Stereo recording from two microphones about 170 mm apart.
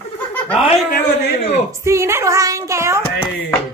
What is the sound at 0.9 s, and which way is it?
Speech, 60° left (ahead or behind).